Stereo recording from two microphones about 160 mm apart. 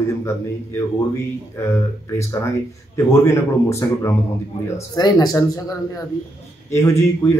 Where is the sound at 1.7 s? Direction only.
15° left (ahead or behind).